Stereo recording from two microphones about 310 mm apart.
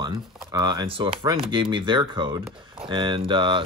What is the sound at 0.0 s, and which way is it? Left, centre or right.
Speech, centre.